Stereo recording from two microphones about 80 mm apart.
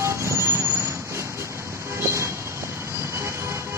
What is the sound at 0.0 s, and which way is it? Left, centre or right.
Vehicle, right.